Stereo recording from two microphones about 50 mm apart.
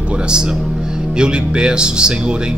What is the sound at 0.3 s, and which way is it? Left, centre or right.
A man's voice, centre.